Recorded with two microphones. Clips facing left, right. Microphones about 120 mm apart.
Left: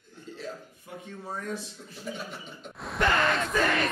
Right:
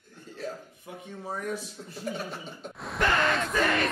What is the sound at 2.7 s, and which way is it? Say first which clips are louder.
Speech: left 1 dB; centre (ahead or behind).